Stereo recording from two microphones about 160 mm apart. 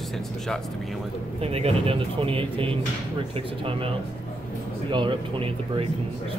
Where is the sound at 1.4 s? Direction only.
40° right (ahead or behind).